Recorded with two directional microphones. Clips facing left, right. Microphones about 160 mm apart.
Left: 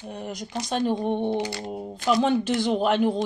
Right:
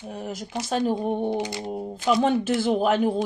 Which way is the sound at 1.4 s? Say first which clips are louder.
Even; 20° right (ahead or behind).